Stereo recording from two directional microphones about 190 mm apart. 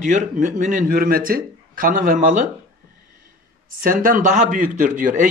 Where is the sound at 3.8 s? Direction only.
45° right (ahead or behind).